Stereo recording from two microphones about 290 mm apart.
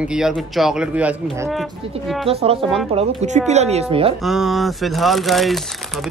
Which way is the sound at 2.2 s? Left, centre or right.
Centre.